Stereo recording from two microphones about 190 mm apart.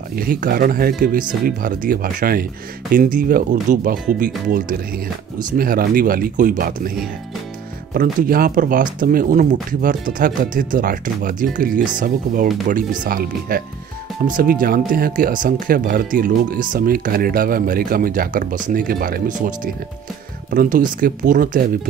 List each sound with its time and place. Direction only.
0.2 s speech: 50° right (ahead or behind)
7.9 s speech: 50° right (ahead or behind)